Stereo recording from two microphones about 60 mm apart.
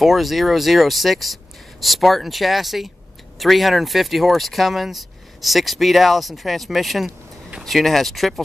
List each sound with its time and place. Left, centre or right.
0.0 s speech: centre